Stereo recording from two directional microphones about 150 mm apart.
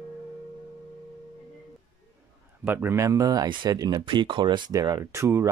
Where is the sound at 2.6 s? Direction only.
15° right (ahead or behind).